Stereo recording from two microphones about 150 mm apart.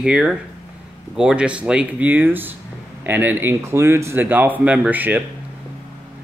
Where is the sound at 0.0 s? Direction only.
5° right (ahead or behind).